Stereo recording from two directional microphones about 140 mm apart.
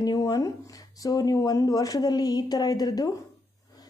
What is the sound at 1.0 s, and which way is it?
Speech, 25° left (ahead or behind).